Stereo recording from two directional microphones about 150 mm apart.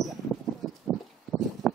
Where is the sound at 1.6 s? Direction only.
Centre (ahead or behind).